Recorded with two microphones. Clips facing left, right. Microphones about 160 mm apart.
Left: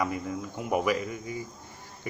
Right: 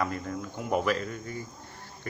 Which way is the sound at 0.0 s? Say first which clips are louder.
Left 1 dB; 10° left (ahead or behind).